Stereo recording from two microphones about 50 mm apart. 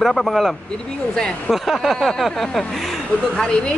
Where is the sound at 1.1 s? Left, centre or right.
Centre.